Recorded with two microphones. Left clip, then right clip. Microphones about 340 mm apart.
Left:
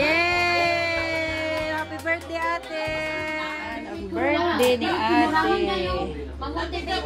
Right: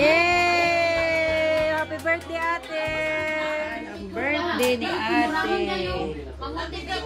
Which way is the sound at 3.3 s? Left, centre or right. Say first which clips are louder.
Right 3 dB; centre.